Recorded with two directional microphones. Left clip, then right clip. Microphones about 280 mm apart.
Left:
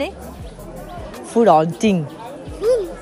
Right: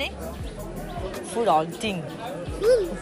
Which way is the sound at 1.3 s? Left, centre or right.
Left.